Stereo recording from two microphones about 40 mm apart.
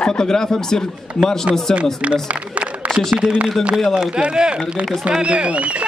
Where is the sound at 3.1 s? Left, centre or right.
Right.